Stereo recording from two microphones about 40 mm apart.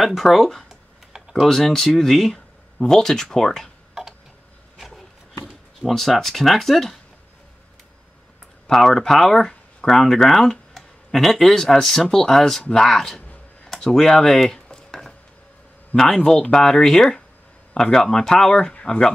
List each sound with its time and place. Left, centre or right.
0.0 s speech: centre
0.7 s computer keyboard: centre
1.5 s speech: centre
4.7 s a sound: centre
5.8 s speech: centre
8.6 s speech: centre
16.3 s speech: centre